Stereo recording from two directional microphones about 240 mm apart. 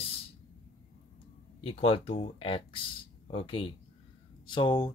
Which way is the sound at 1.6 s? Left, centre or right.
Left.